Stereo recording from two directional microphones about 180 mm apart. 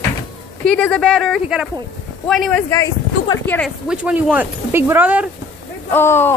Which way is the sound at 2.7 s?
15° left (ahead or behind).